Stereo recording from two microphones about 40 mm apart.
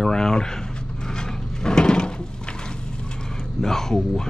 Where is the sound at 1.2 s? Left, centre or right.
Centre.